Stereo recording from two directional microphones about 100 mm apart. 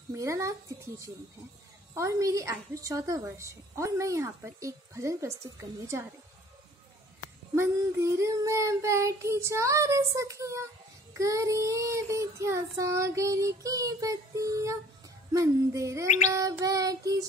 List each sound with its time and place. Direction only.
0.1 s a woman's voice: 30° right (ahead or behind)
7.5 s a woman's voice: 30° right (ahead or behind)